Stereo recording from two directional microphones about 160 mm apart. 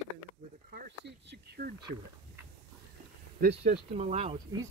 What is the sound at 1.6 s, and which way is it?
Speech, 55° right (ahead or behind).